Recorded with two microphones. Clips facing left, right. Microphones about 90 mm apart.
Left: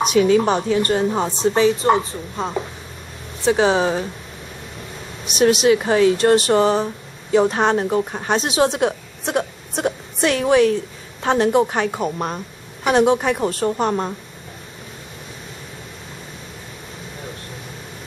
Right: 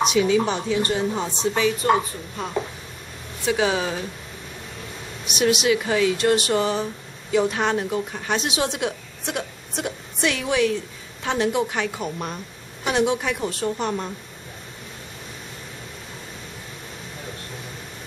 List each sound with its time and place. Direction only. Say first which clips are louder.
0.0 s a woman's voice: left 4 dB; 45° left (ahead or behind)
1.4 s speech: left 6 dB; 35° left (ahead or behind)
5.2 s a woman's voice: left 5 dB; 35° left (ahead or behind)